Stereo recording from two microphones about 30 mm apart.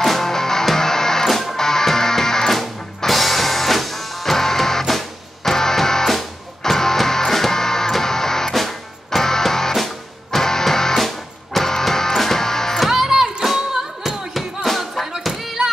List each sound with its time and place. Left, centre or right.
0.0 s music: centre
3.1 s music: centre
9.8 s music: centre
10.4 s music: centre
11.0 s music: centre
12.8 s music: centre